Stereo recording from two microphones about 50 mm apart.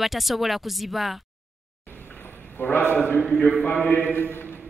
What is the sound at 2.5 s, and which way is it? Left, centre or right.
A man's voice, left.